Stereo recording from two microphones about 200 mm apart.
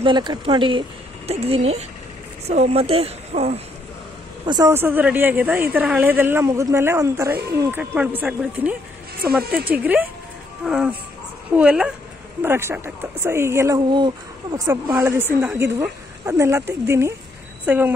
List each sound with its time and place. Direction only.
0.0 s speech: 20° right (ahead or behind)
4.5 s speech: 15° right (ahead or behind)